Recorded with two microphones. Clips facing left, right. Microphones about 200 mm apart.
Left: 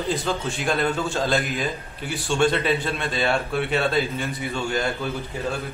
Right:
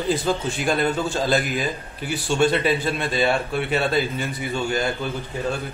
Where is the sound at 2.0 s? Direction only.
Centre (ahead or behind).